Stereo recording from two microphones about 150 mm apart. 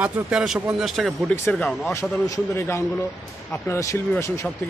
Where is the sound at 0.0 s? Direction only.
5° right (ahead or behind).